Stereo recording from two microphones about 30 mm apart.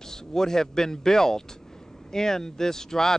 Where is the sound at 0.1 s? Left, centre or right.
Centre.